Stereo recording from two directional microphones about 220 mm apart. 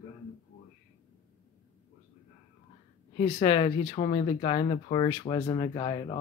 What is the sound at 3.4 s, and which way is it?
Speech, 20° left (ahead or behind).